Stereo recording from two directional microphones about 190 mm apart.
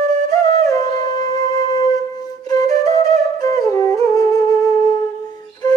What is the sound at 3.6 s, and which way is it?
Music, 15° left (ahead or behind).